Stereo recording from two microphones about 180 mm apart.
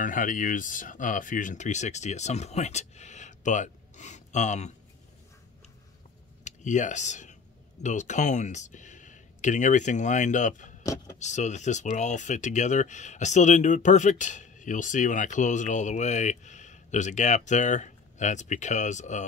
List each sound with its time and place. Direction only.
0.0 s speech: 45° left (ahead or behind)
6.4 s speech: 40° left (ahead or behind)